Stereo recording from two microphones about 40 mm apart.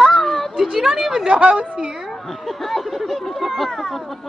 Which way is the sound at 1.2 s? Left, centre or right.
Right.